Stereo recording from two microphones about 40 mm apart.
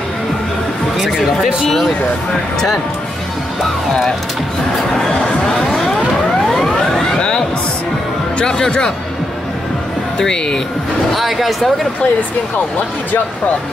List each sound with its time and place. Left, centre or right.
0.9 s a sound: centre
5.5 s a sound: centre
6.5 s vehicle: centre
7.2 s music: centre
8.5 s speech: centre
10.1 s speech: centre
11.1 s speech: centre